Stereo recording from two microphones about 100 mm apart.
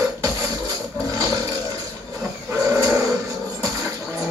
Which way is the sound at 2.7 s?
30° right (ahead or behind).